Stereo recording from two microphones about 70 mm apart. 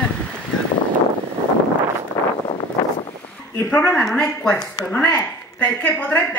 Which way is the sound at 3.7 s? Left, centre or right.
Centre.